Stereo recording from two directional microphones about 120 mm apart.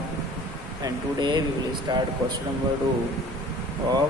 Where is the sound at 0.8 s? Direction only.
40° right (ahead or behind).